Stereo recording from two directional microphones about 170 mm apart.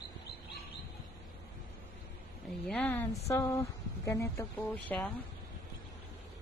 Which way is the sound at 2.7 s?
10° left (ahead or behind).